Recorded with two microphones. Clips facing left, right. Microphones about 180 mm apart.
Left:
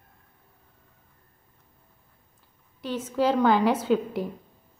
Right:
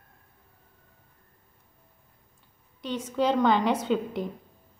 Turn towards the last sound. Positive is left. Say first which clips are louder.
# left 3 dB
turn(degrees=5)  # may be behind; listen again after turning